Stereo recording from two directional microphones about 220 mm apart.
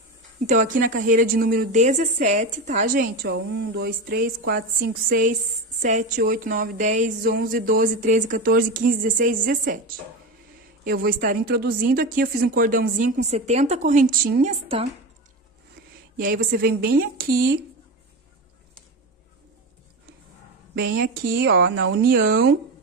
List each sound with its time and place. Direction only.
0.5 s speech: 35° right (ahead or behind)
3.3 s speech: 55° right (ahead or behind)
4.1 s speech: 40° right (ahead or behind)
5.8 s speech: 35° right (ahead or behind)
11.1 s speech: 40° right (ahead or behind)
16.2 s speech: 40° right (ahead or behind)
20.7 s speech: 45° right (ahead or behind)